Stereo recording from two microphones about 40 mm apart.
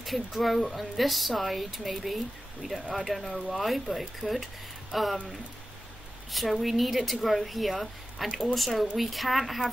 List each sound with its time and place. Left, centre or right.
0.0 s speech: centre
3.3 s speech: centre
3.5 s speech: centre